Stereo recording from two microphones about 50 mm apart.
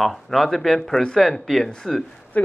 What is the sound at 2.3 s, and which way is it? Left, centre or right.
Speech, left.